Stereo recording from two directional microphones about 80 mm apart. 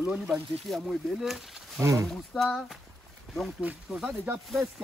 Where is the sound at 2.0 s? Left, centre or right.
Centre.